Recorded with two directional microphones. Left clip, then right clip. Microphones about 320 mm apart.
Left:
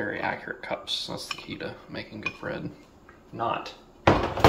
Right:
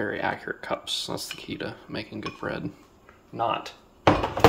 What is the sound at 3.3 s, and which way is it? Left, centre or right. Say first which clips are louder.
Drawer open or close: right 2 dB; centre.